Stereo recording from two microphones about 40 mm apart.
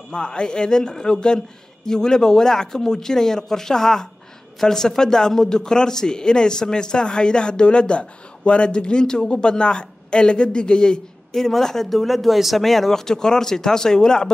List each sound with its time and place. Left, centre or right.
0.1 s a man's voice: left
11.3 s speech: centre